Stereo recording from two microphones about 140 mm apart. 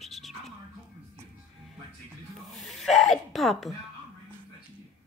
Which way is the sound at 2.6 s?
Centre (ahead or behind).